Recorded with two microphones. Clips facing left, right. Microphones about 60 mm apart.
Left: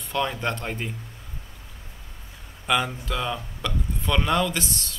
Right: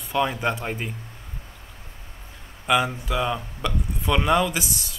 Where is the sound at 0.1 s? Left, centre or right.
Centre.